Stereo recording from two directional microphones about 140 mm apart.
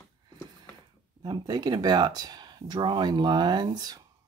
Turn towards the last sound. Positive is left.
turn(degrees=-30)  # may be behind; listen again after turning